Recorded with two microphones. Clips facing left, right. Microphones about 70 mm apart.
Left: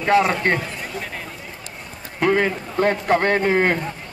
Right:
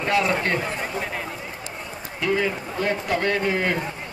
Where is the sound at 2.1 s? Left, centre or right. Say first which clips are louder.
Left 5 dB; left.